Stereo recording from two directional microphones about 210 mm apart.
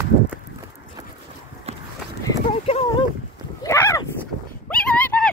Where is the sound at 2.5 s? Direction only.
25° left (ahead or behind).